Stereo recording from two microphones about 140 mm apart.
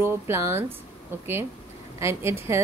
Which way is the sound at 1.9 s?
20° right (ahead or behind).